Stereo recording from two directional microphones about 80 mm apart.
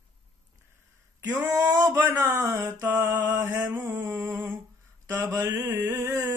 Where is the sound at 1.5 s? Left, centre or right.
Right.